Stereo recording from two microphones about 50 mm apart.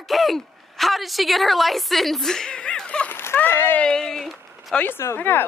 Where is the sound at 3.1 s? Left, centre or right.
Left.